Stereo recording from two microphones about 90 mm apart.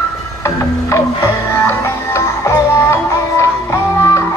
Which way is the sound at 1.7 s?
30° left (ahead or behind).